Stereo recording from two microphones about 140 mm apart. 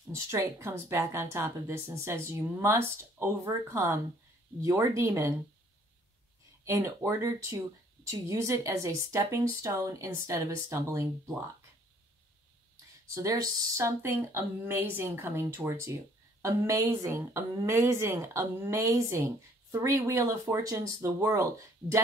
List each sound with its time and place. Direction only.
0.3 s a woman's voice: 20° right (ahead or behind)
6.6 s a woman's voice: 20° right (ahead or behind)
13.1 s a woman's voice: 25° right (ahead or behind)